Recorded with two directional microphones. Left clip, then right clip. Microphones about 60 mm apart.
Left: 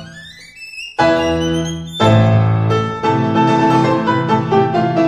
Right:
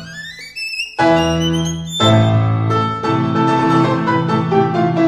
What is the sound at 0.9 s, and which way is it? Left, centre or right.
Music, right.